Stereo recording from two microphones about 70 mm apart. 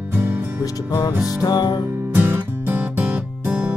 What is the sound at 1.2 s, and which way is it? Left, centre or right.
Music, left.